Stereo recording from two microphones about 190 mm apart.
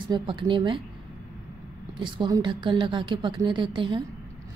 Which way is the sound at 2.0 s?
20° right (ahead or behind).